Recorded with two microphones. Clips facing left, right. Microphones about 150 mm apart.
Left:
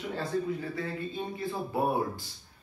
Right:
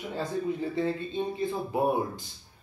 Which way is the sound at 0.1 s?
25° right (ahead or behind).